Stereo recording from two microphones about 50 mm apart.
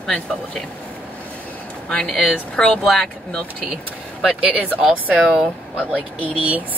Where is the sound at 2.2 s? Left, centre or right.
Left.